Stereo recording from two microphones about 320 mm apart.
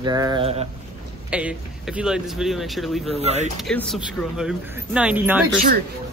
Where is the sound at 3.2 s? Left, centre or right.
Centre.